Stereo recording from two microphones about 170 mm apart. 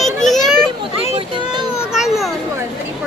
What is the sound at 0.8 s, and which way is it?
Speech, 30° right (ahead or behind).